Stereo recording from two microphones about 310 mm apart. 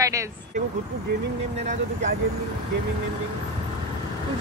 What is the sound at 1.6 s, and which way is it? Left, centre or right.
Speech, right.